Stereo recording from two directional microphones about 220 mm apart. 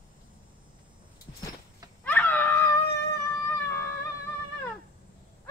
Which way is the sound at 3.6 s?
10° left (ahead or behind).